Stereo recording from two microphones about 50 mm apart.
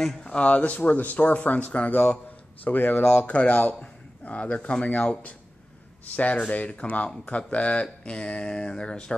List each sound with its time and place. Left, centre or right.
0.0 s speech: centre
6.1 s speech: left